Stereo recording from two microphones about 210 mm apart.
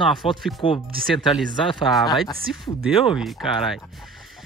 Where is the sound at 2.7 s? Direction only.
25° left (ahead or behind).